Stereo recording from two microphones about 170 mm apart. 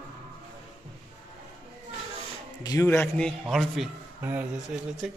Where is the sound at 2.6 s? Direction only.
20° left (ahead or behind); by 3.9 s centre (ahead or behind).